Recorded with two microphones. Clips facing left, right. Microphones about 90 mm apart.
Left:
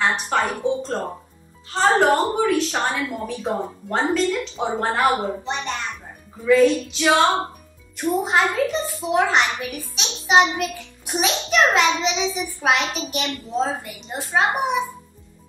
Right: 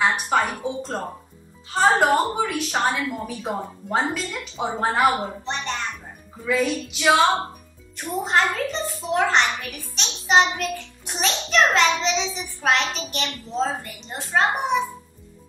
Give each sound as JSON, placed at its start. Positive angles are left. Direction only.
{"t": 0.0, "sound": "a woman's voice", "side_deg": -5}
{"t": 8.2, "sound": "a child's voice", "side_deg": 5}